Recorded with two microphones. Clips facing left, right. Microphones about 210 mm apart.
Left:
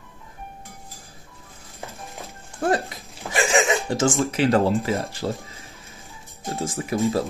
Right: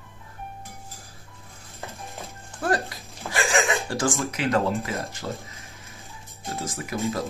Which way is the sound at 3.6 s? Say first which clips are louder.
Left 4 dB; 20° left (ahead or behind).